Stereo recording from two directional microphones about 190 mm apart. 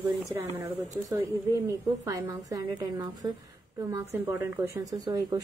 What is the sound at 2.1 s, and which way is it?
Speech, 20° right (ahead or behind).